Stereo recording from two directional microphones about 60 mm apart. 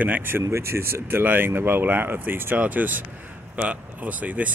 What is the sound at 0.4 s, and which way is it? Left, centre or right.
Speech, right.